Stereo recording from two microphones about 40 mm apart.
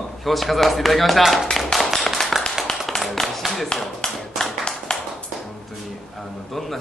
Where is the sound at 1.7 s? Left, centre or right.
Centre.